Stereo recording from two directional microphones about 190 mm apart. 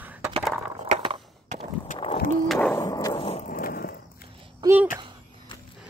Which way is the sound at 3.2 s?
30° left (ahead or behind).